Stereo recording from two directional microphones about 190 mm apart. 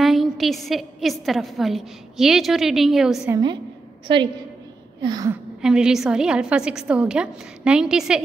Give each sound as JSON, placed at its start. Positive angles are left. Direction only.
{"t": 0.0, "sound": "a woman's voice", "side_deg": 0}
{"t": 3.3, "sound": "speech", "side_deg": -20}
{"t": 5.3, "sound": "a woman's voice", "side_deg": -5}